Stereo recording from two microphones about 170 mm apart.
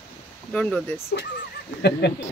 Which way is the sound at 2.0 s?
80° left.